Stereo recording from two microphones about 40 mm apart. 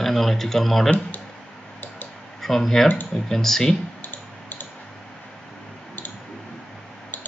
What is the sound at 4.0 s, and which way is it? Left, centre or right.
Clicking, left.